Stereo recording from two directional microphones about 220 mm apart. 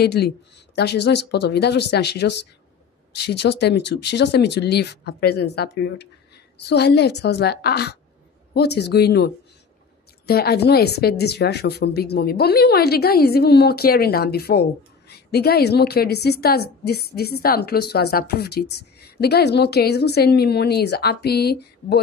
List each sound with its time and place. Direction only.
0.0 s a woman's voice: 45° left (ahead or behind)